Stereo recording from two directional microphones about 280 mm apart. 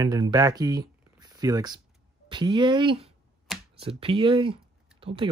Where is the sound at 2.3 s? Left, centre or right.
Centre.